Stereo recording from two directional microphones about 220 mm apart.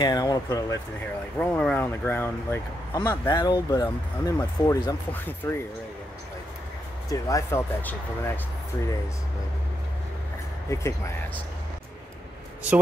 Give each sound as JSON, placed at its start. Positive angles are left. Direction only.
{"t": 0.0, "sound": "speech", "side_deg": 20}
{"t": 1.4, "sound": "speech", "side_deg": 5}
{"t": 7.1, "sound": "speech", "side_deg": 15}
{"t": 10.7, "sound": "speech", "side_deg": 10}